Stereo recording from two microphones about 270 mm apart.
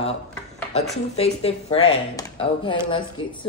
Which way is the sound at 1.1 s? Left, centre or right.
Left.